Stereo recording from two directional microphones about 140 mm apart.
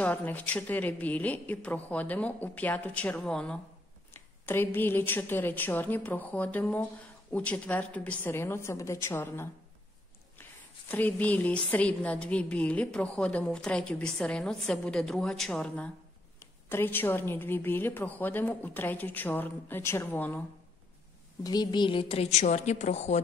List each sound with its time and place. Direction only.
0.0 s a woman's voice: 10° left (ahead or behind)
21.4 s a woman's voice: 30° left (ahead or behind); by 23.2 s 55° left (ahead or behind)